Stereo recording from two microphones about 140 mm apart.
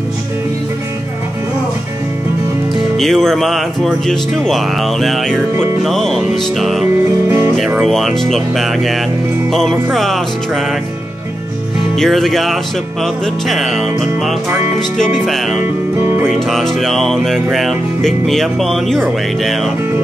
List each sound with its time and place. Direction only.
3.0 s speech: centre (ahead or behind)
7.2 s music: 15° right (ahead or behind)
7.8 s speech: centre (ahead or behind)
12.0 s speech: centre (ahead or behind)